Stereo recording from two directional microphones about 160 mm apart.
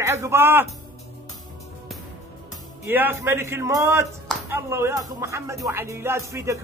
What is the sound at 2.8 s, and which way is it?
Speech, 15° right (ahead or behind).